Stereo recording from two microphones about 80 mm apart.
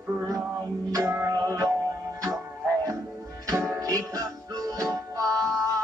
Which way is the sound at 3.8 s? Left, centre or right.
Right.